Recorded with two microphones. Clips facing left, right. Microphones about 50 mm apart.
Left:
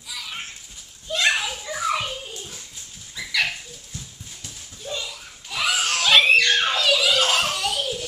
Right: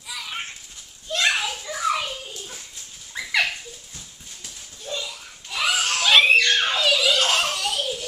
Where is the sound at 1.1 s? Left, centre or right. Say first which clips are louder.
Left 1 dB; centre.